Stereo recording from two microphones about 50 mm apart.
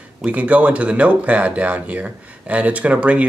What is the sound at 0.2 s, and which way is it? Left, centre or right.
Speech, right.